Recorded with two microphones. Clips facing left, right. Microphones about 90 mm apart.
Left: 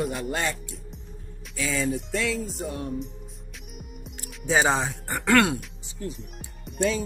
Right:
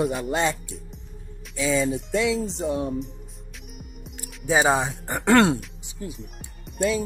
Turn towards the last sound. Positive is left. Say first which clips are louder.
# right 2 dB
turn(degrees=-5)  # may be behind; listen again after turning